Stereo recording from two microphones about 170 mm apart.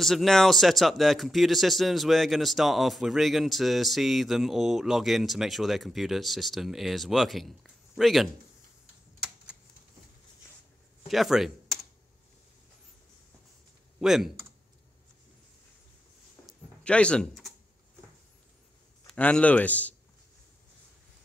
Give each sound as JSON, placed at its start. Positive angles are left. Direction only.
{"t": 0.0, "sound": "speech", "side_deg": 0}
{"t": 11.1, "sound": "speech", "side_deg": 0}
{"t": 13.9, "sound": "speech", "side_deg": 0}
{"t": 16.8, "sound": "speech", "side_deg": 5}
{"t": 19.0, "sound": "a man's voice", "side_deg": 5}